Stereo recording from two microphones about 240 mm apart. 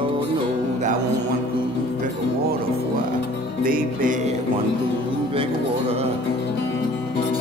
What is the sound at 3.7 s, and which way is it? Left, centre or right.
Speech, right.